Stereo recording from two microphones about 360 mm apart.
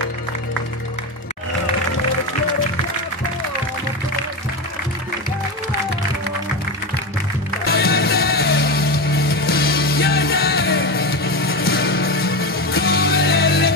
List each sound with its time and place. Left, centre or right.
7.6 s music: left